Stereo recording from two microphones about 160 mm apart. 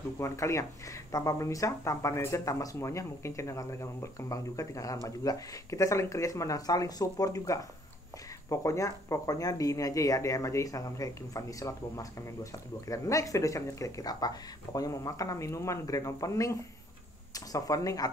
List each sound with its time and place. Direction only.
0.2 s speech: 20° left (ahead or behind)